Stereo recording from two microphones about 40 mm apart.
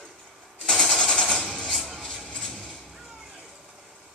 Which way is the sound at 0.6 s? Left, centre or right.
Centre.